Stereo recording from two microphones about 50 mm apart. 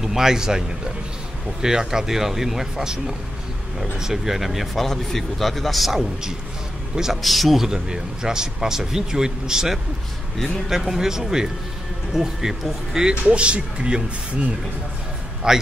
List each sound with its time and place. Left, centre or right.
0.0 s speech: centre
7.6 s speech: centre
10.8 s speech: centre
13.1 s speech: right
15.4 s speech: centre